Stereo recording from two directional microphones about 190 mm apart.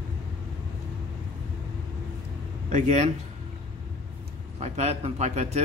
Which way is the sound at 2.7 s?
40° right (ahead or behind).